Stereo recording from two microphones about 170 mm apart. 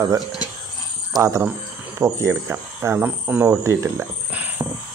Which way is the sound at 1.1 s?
20° right (ahead or behind).